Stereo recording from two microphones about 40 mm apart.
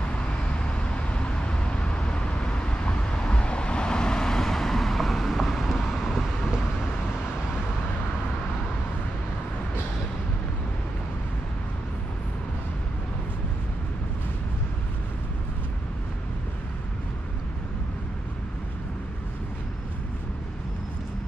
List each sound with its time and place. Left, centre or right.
0.1 s vehicle: left; by 6.5 s centre